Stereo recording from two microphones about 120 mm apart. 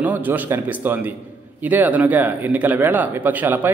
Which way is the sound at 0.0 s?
15° right (ahead or behind).